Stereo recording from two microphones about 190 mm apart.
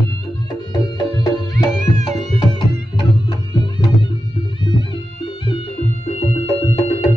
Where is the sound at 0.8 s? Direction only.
20° left (ahead or behind).